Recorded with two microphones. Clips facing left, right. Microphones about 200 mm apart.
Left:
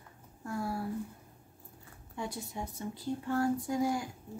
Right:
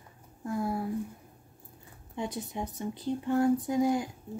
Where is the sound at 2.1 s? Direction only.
20° right (ahead or behind).